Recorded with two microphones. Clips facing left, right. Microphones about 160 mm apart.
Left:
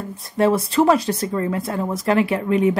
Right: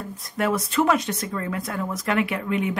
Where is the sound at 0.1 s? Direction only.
30° left (ahead or behind).